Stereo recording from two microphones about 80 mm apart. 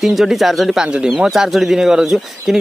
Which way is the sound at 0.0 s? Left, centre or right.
Centre.